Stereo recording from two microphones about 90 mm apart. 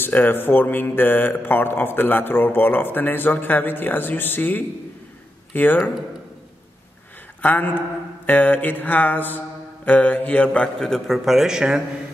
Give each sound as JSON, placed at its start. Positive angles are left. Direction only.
{"t": 0.0, "sound": "speech", "side_deg": 20}
{"t": 7.4, "sound": "a man's voice", "side_deg": 20}